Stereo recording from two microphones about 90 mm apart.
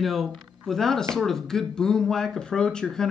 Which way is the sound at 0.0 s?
Centre (ahead or behind).